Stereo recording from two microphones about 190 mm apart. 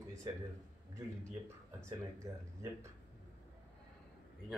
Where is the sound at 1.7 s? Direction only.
15° right (ahead or behind).